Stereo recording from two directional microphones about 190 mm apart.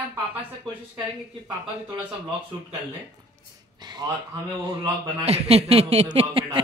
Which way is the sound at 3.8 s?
20° right (ahead or behind).